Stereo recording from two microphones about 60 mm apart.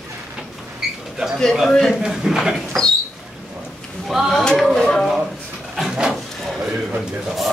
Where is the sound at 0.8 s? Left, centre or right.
Centre.